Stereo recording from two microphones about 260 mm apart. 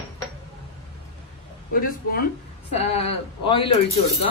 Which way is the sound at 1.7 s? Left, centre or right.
Left.